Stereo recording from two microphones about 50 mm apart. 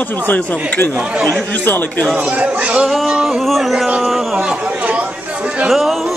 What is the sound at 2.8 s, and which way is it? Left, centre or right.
Speech, centre.